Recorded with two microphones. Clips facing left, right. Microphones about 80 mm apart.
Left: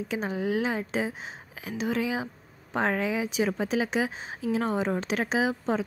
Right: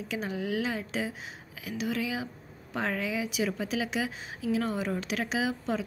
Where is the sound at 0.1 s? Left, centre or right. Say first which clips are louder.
Left 3 dB; left.